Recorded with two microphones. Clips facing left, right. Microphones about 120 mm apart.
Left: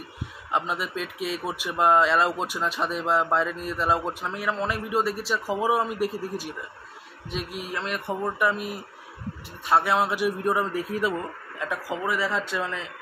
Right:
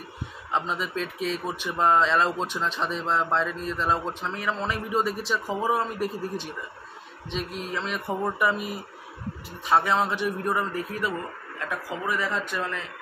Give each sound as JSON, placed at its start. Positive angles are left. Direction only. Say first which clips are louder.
{"t": 0.5, "sound": "a man's voice", "louder": "left 1 dB", "side_deg": 10}